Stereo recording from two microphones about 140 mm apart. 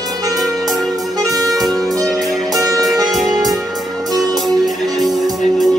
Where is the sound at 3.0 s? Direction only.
Centre (ahead or behind).